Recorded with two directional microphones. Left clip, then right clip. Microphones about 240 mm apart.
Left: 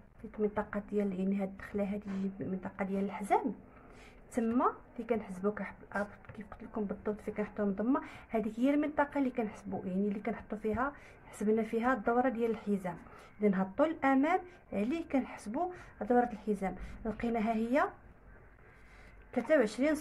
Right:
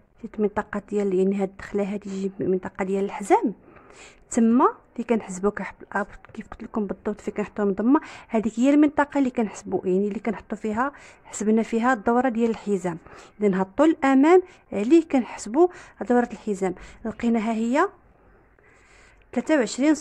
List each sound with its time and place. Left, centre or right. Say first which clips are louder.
0.3 s a woman's voice: right 9 dB; right
19.3 s a woman's voice: right 6 dB; right